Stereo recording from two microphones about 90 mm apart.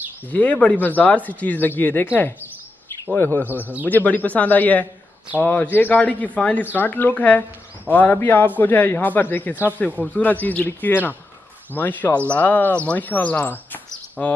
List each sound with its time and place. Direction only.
0.3 s a man's voice: 15° left (ahead or behind)
3.8 s a man's voice: 20° left (ahead or behind)